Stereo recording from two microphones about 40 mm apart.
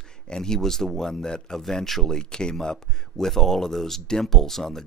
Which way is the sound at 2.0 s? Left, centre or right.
Centre.